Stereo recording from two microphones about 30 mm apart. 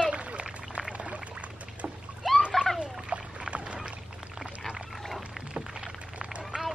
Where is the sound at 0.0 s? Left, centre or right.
Right.